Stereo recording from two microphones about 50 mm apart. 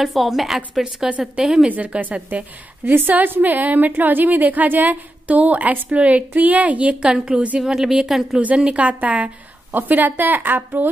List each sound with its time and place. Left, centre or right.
0.0 s a woman's voice: centre
1.7 s a woman's voice: right
2.8 s a woman's voice: right
7.0 s a woman's voice: centre
8.4 s a woman's voice: right
9.7 s a woman's voice: right